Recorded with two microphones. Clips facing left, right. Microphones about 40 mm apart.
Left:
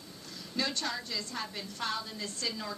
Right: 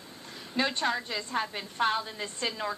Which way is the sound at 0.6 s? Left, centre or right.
Right.